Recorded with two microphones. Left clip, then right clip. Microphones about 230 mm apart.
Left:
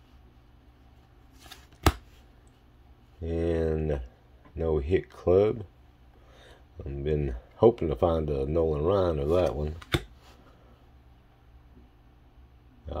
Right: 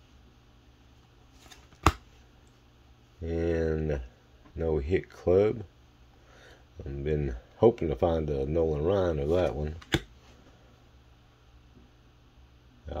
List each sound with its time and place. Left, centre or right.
1.5 s shuffling cards: left
3.2 s a sound: centre
4.6 s speech: centre